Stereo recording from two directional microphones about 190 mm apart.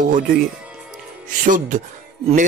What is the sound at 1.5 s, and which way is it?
Speech, 40° right (ahead or behind).